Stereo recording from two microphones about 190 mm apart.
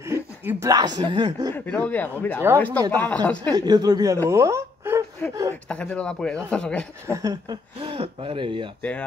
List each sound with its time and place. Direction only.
0.0 s speech: 15° right (ahead or behind)
1.5 s speech: 10° left (ahead or behind)
3.5 s speech: 20° right (ahead or behind)
5.5 s speech: 5° left (ahead or behind)
7.1 s speech: 15° right (ahead or behind)